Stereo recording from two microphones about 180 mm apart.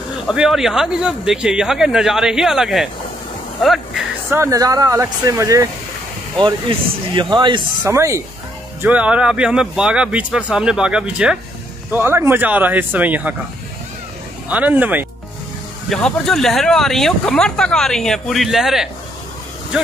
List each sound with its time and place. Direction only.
0.3 s speech: centre (ahead or behind)
4.3 s speech: 15° right (ahead or behind)
7.2 s speech: 25° right (ahead or behind)
7.8 s speech: 15° right (ahead or behind)
14.5 s speech: 10° right (ahead or behind)
15.9 s speech: centre (ahead or behind)